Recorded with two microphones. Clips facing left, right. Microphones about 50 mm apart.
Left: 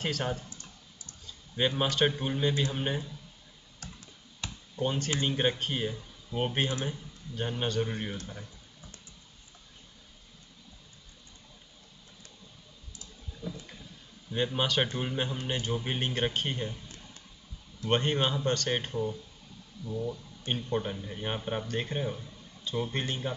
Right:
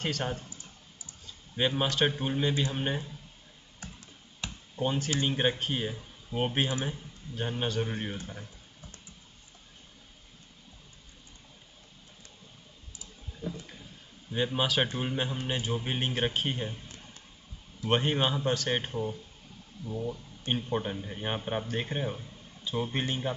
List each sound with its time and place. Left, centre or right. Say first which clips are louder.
0.0 s speech: even; centre
0.5 s typing: even; left
1.2 s speech: even; centre
4.7 s speech: right 1 dB; centre
13.4 s a sound: right 2 dB; right
14.3 s speech: even; centre